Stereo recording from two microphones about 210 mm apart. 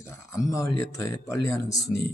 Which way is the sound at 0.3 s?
15° left (ahead or behind).